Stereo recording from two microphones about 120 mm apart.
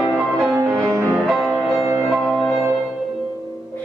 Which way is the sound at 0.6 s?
25° right (ahead or behind).